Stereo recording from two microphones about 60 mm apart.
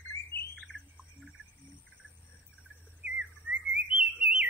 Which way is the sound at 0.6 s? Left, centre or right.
Left.